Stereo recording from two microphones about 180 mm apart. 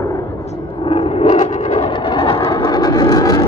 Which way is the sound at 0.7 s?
30° left (ahead or behind).